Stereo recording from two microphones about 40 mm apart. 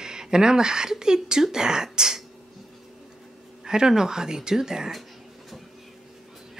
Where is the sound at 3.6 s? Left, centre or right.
Centre.